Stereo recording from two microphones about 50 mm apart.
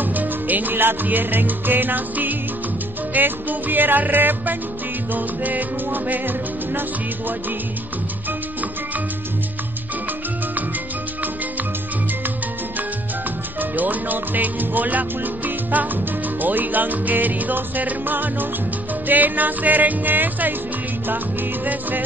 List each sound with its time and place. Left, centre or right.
0.0 s music: right
13.6 s music: right